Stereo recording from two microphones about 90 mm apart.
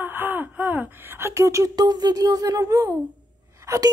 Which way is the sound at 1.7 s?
50° right (ahead or behind).